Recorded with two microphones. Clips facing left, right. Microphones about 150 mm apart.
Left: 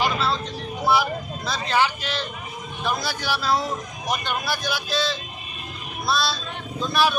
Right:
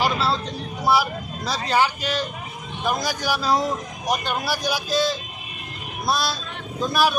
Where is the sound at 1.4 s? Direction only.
40° right (ahead or behind).